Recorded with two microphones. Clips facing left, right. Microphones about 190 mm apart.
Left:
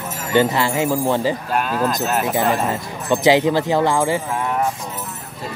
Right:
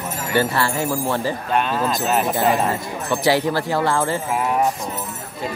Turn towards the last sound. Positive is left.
turn(degrees=15)  # may be behind; listen again after turning